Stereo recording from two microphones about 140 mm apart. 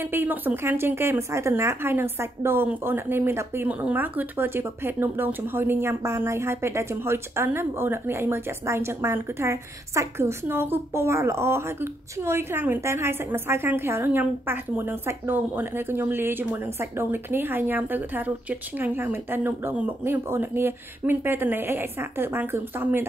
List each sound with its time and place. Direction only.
0.0 s speech: 15° right (ahead or behind)